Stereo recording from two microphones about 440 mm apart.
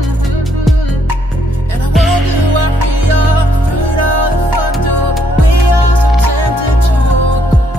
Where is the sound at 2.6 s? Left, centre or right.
Right.